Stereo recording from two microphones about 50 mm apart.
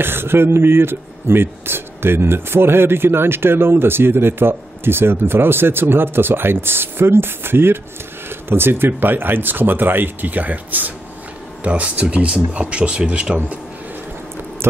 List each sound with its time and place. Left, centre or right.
0.0 s speech: right
14.6 s biting: right